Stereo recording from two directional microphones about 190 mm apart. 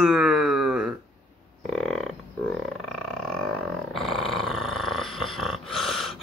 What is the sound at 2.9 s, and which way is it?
Roar, 5° left (ahead or behind).